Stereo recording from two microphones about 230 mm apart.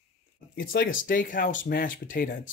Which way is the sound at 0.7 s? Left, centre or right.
Left.